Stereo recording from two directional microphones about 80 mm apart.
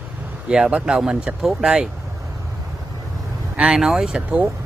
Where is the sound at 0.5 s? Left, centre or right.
Centre.